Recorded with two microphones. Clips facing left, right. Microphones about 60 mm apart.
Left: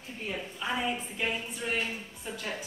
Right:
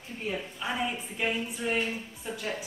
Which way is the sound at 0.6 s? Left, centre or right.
Centre.